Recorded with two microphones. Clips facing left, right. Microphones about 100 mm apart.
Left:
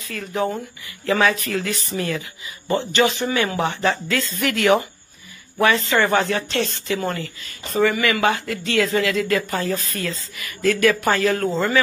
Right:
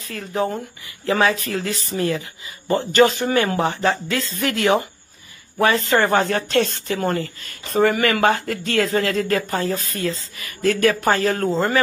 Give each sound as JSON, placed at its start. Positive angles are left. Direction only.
{"t": 0.1, "sound": "a woman's voice", "side_deg": -25}
{"t": 2.9, "sound": "a woman's voice", "side_deg": -40}
{"t": 5.9, "sound": "a woman's voice", "side_deg": -45}